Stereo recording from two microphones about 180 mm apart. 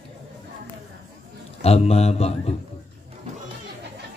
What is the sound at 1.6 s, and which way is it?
Speech, 35° left (ahead or behind).